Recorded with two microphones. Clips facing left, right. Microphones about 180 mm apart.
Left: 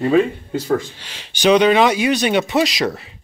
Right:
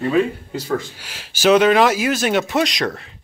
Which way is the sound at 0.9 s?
5° right (ahead or behind).